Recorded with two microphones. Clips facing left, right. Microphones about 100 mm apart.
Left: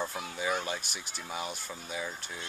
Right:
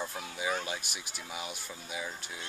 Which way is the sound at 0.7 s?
5° right (ahead or behind).